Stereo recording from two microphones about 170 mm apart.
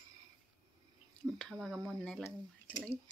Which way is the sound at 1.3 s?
5° left (ahead or behind).